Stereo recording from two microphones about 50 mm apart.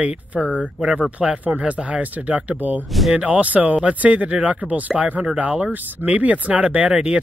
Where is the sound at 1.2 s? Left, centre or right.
Right.